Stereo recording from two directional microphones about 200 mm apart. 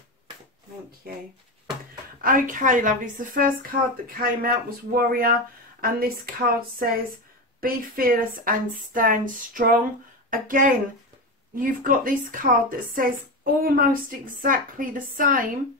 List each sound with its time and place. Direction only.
2.2 s speech: 40° right (ahead or behind)